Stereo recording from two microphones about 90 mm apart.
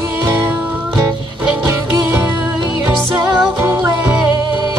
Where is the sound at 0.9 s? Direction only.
40° right (ahead or behind).